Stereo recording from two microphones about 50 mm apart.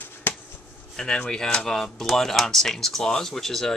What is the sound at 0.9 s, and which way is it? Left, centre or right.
Speech, centre.